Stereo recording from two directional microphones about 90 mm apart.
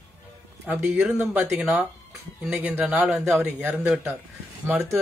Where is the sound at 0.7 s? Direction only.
15° right (ahead or behind).